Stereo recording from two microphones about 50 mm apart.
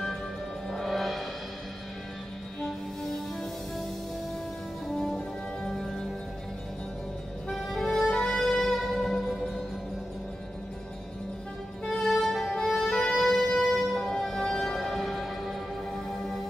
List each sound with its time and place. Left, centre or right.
0.7 s music: centre
4.9 s music: centre
7.4 s music: centre
11.8 s music: centre